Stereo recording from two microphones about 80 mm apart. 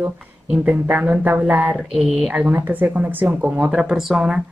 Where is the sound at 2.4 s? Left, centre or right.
Right.